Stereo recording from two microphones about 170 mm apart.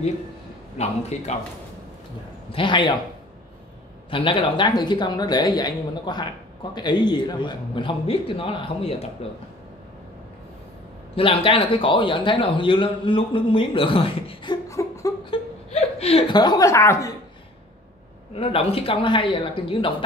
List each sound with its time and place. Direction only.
0.7 s speech: 40° left (ahead or behind)
2.5 s speech: 30° left (ahead or behind)
4.1 s speech: 30° left (ahead or behind)
11.1 s speech: 30° left (ahead or behind)
15.2 s laughter: 35° left (ahead or behind)
16.3 s speech: 20° left (ahead or behind)
18.3 s speech: 35° left (ahead or behind)